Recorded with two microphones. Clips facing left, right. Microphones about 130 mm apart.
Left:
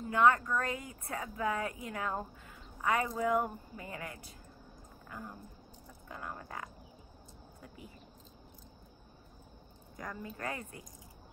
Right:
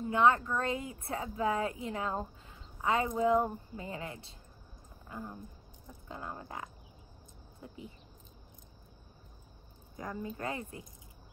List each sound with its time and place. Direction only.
0.1 s speech: 20° right (ahead or behind)
9.9 s speech: 25° right (ahead or behind)